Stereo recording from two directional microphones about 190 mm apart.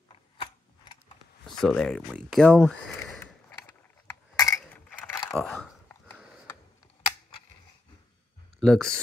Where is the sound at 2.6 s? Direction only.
5° left (ahead or behind).